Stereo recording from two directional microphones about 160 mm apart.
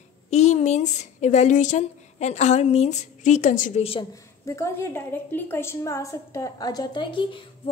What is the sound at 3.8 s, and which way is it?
Speech, 35° left (ahead or behind).